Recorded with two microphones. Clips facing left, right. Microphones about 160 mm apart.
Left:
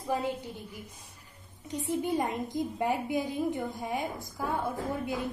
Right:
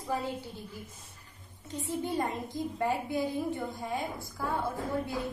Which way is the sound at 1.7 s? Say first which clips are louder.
Left 3 dB; 15° left (ahead or behind).